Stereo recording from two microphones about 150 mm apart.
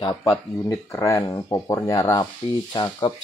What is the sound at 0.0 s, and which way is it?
Speech, 20° left (ahead or behind).